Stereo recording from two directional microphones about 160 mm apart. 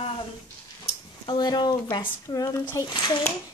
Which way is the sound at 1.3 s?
25° left (ahead or behind).